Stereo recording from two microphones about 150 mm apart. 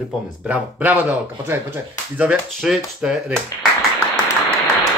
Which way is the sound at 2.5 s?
Centre (ahead or behind).